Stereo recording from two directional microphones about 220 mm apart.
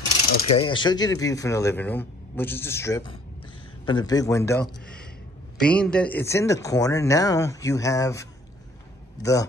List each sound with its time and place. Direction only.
0.6 s speech: 20° left (ahead or behind)